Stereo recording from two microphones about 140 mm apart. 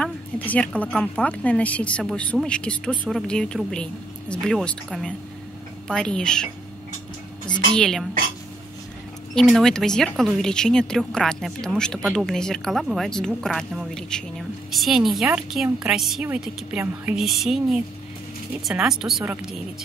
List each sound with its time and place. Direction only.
0.0 s speech: 10° left (ahead or behind)
7.7 s speech: 5° left (ahead or behind)
9.3 s a woman's voice: 5° left (ahead or behind)